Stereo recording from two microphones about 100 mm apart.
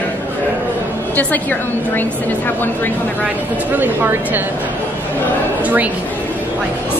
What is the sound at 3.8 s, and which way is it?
Speech, 20° right (ahead or behind).